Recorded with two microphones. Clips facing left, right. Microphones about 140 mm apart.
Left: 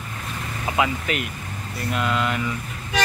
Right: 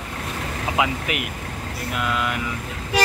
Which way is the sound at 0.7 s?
15° right (ahead or behind).